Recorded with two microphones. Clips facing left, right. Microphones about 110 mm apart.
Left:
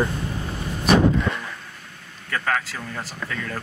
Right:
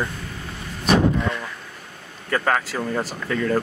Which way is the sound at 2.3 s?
25° right (ahead or behind).